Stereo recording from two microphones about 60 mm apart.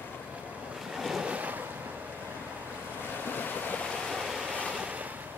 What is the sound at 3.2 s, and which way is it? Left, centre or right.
Waves, left.